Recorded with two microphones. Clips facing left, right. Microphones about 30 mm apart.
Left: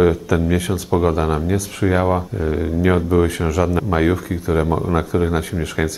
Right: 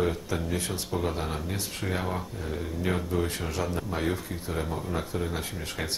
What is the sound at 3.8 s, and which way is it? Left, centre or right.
Speech, left.